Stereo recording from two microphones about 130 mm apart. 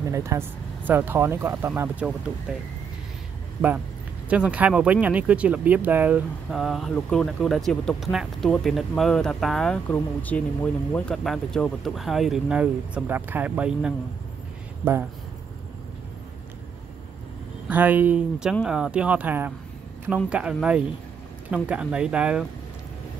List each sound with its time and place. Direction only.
0.1 s speech: 25° right (ahead or behind)
2.0 s speech: 5° right (ahead or behind)
4.3 s speech: 10° right (ahead or behind)
6.5 s speech: centre (ahead or behind)
17.6 s speech: 15° right (ahead or behind)